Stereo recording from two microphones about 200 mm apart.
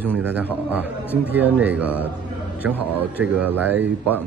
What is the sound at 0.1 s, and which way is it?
Speech, 10° right (ahead or behind).